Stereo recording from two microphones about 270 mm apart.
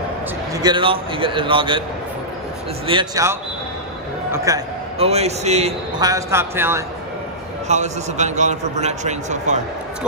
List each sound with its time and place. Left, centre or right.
0.6 s a man's voice: centre
2.9 s a man's voice: centre
4.5 s a man's voice: centre
4.9 s a man's voice: right
7.6 s a man's voice: right